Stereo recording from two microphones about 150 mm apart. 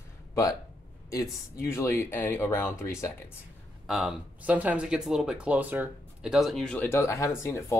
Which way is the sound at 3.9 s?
5° right (ahead or behind).